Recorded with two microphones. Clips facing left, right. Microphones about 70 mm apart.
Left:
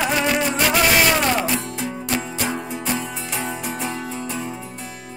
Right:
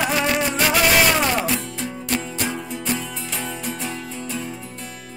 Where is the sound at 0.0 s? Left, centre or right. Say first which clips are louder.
Left 1 dB; centre.